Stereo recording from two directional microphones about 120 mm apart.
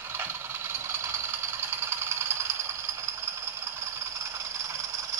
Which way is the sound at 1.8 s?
20° right (ahead or behind).